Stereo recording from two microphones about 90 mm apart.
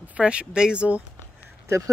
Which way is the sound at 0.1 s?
15° right (ahead or behind).